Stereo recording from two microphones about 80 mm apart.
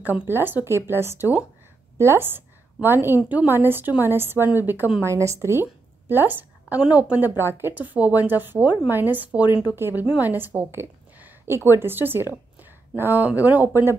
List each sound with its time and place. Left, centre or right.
0.0 s a woman's voice: right
5.0 s a woman's voice: right